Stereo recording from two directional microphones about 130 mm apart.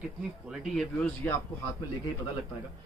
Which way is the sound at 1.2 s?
10° left (ahead or behind).